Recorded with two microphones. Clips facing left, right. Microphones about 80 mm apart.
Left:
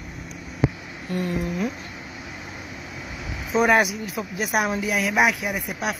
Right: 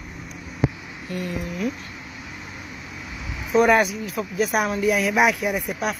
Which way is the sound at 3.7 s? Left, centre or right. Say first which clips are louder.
Right 1 dB; centre.